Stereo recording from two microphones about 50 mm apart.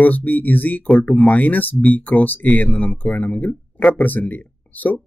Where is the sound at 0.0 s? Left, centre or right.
Left.